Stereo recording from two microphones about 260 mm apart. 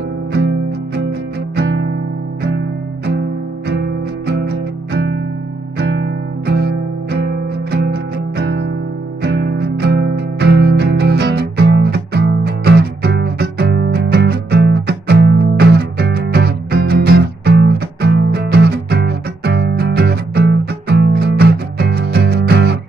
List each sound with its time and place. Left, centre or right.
0.3 s music: right
3.2 s music: right